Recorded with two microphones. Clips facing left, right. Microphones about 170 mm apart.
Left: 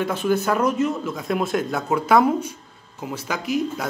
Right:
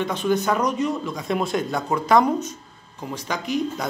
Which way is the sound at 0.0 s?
5° left (ahead or behind).